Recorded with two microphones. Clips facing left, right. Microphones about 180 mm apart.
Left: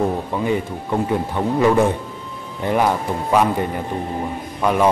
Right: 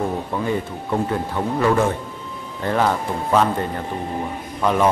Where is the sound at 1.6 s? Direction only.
15° left (ahead or behind).